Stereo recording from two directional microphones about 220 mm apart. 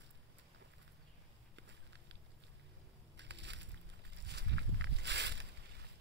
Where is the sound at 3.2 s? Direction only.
55° right (ahead or behind).